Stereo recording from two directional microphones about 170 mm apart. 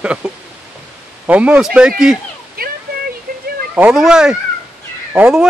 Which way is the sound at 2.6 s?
60° right (ahead or behind).